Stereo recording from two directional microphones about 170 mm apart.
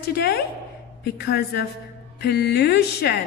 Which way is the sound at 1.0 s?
85° left.